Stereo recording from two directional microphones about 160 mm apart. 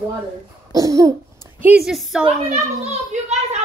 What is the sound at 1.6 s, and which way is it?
Speech, 5° right (ahead or behind).